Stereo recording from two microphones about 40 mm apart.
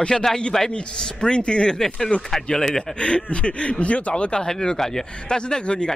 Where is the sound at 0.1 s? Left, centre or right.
Centre.